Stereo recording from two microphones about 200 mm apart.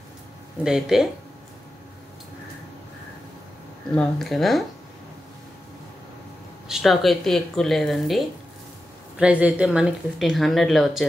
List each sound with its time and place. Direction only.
0.7 s speech: centre (ahead or behind)
3.9 s speech: 5° left (ahead or behind)
6.7 s speech: centre (ahead or behind)